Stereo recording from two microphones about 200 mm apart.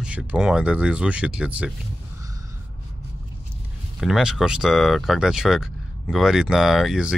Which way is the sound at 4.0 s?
Centre (ahead or behind).